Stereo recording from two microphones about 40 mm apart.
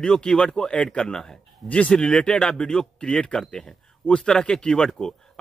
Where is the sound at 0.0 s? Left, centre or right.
Left.